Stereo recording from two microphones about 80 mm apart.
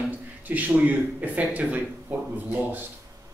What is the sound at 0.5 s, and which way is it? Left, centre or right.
A man's voice, right.